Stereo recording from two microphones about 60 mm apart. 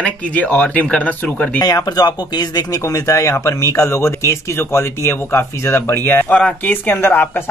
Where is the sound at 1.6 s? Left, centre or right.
Left.